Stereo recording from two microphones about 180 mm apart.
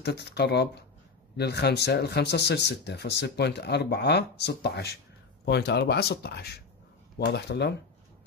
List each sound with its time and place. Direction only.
0.0 s speech: 65° left (ahead or behind)